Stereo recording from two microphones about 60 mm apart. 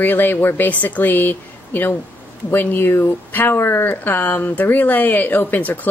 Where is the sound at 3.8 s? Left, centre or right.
Left.